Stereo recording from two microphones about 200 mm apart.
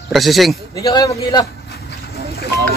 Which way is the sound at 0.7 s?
20° left (ahead or behind).